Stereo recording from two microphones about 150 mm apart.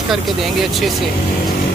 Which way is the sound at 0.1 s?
Centre (ahead or behind).